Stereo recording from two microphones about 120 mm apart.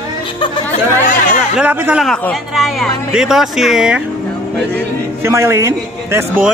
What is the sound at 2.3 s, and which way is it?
Speech, centre (ahead or behind).